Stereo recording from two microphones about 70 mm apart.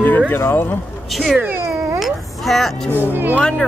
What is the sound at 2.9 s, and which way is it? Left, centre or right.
Speech, right.